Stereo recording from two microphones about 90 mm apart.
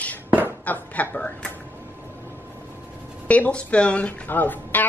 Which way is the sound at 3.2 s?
15° left (ahead or behind).